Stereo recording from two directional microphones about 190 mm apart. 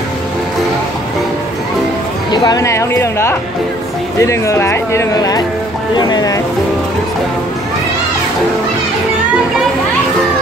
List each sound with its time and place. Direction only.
2.3 s speech: 20° left (ahead or behind)